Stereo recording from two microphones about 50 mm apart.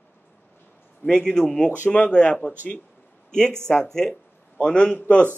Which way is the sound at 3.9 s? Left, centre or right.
Centre.